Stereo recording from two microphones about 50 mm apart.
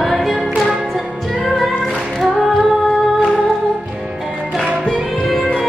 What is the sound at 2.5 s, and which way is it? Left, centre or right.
Music, centre.